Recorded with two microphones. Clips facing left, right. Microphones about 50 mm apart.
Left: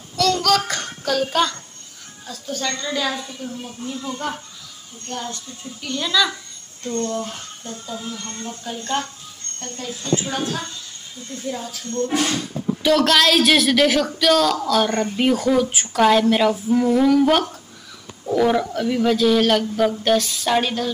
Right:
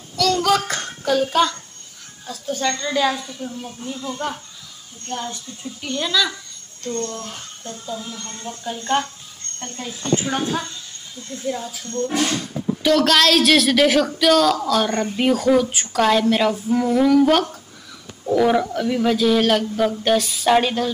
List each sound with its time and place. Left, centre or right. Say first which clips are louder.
0.1 s a sound: even; centre
0.4 s a sound: right 1 dB; centre
2.2 s a woman's voice: right 3 dB; centre
5.3 s a woman's voice: right 1 dB; centre
6.8 s a man's voice: left 3 dB; centre
9.0 s speech: right 3 dB; right
11.5 s a man's voice: left 1 dB; centre